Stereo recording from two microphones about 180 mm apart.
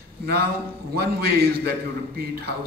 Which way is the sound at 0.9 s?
60° right (ahead or behind).